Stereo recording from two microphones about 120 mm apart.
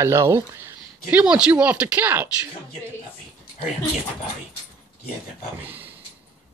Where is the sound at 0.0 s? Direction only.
25° right (ahead or behind).